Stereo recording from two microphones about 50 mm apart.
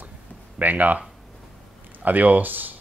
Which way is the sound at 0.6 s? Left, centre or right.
Right.